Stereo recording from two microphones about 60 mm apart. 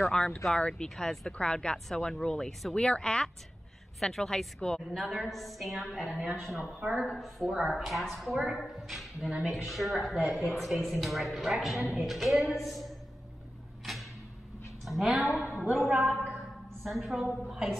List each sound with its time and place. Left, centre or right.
0.6 s speech: centre
0.8 s speech: centre
4.9 s a woman's voice: centre
7.4 s a woman's voice: centre
7.7 s a woman's voice: centre
13.9 s a sound: centre
14.9 s a woman's voice: centre